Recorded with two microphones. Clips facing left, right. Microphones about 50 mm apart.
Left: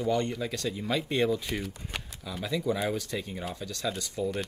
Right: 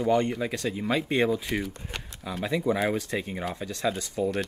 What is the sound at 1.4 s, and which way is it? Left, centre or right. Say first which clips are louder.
Speech: right 4 dB; centre.